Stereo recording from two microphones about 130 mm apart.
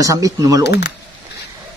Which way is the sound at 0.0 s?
25° right (ahead or behind).